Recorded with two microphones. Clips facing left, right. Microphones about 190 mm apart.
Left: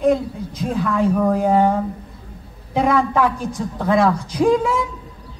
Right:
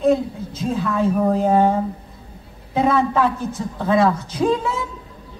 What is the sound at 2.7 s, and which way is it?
A man's voice, 15° left (ahead or behind).